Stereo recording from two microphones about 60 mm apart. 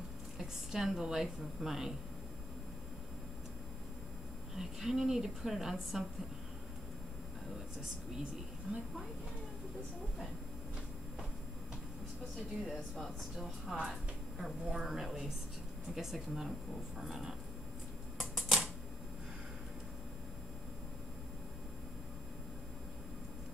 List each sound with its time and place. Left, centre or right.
0.4 s a woman's voice: centre
4.6 s a woman's voice: centre
8.7 s a woman's voice: centre
12.6 s a woman's voice: centre
18.3 s typewriter: centre